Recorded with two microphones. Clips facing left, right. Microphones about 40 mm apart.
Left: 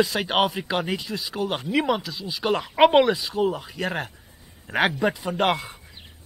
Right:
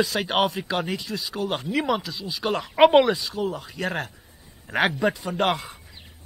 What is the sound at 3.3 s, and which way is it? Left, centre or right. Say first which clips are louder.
Speech: left 4 dB; left.